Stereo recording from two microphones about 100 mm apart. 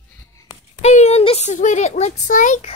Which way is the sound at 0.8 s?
90° left.